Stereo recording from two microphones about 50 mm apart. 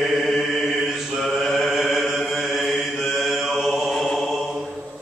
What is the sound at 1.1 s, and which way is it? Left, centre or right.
Mantra, centre.